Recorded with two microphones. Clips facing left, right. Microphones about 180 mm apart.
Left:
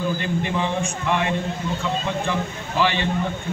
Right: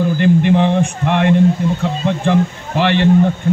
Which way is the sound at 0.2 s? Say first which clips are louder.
Right 11 dB; 65° right (ahead or behind).